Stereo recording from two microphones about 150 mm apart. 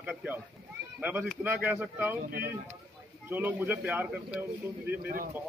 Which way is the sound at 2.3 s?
90° right.